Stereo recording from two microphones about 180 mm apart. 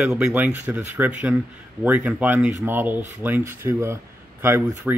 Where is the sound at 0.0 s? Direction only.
5° right (ahead or behind).